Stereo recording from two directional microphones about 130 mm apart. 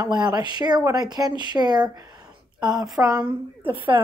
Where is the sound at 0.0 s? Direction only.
30° right (ahead or behind).